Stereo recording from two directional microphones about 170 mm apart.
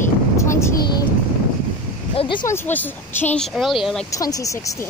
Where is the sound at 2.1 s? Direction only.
35° left (ahead or behind).